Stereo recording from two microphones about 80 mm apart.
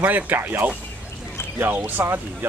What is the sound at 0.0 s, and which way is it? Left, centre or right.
Speech, right.